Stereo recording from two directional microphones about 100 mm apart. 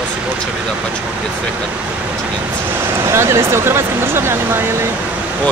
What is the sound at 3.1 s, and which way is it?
Speech, 25° right (ahead or behind).